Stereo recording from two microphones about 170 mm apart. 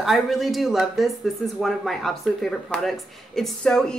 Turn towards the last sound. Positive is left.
turn(degrees=5)  # may be behind; listen again after turning